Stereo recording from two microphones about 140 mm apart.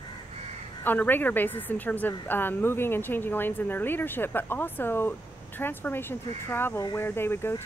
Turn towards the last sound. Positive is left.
turn(degrees=15)  # may be behind; listen again after turning